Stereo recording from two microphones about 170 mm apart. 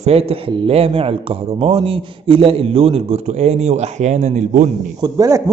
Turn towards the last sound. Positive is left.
turn(degrees=-20)  # may be behind; listen again after turning